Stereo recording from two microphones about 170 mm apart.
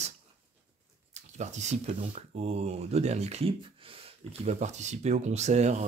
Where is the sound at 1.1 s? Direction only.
45° right (ahead or behind).